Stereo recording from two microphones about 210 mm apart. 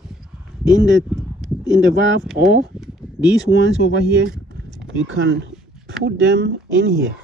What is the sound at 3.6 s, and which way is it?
Speech, 60° right (ahead or behind).